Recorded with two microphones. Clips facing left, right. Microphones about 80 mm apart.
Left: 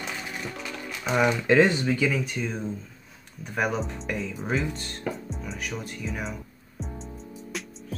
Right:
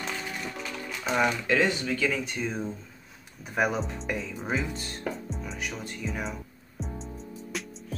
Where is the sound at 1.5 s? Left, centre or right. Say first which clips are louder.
Left 5 dB; left.